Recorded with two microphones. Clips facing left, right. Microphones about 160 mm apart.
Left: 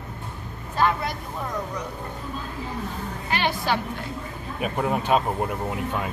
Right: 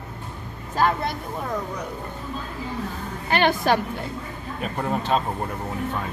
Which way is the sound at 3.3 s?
55° right (ahead or behind).